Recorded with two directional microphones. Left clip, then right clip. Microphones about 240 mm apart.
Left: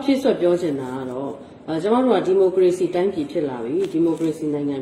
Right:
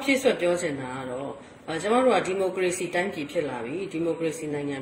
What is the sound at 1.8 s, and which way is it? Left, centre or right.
Speech, right.